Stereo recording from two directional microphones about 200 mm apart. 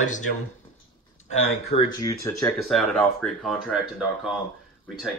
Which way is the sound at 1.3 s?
35° left (ahead or behind).